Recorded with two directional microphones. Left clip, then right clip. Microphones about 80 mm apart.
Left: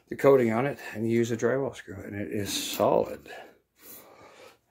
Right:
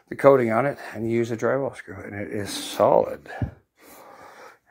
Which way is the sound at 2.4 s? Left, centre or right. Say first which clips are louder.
Right 6 dB; centre.